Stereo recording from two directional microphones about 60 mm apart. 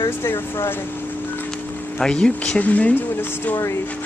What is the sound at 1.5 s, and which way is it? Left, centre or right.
Music, centre.